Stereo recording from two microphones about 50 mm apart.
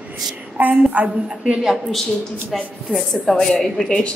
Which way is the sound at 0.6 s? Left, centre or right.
Right.